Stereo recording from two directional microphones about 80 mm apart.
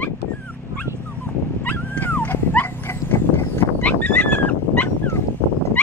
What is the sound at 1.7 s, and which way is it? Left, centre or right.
Dog, left.